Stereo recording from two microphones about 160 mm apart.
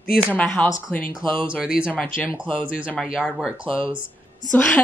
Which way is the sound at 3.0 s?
5° right (ahead or behind).